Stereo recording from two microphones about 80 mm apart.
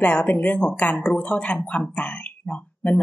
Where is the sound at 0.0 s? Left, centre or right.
Left.